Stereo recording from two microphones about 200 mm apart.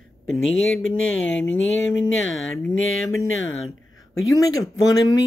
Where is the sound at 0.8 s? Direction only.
75° left (ahead or behind).